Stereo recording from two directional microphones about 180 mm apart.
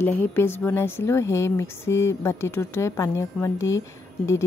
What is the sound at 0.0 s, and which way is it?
Speech, 10° left (ahead or behind).